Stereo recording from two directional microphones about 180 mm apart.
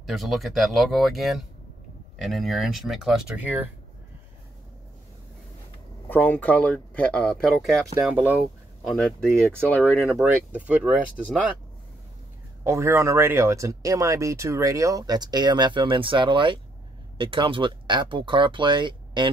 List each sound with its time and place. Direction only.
0.0 s speech: centre (ahead or behind)
6.0 s speech: 10° left (ahead or behind)
7.9 s speech: 10° right (ahead or behind)
9.6 s speech: 10° left (ahead or behind)
10.0 s speech: 5° right (ahead or behind)
12.6 s speech: 15° right (ahead or behind)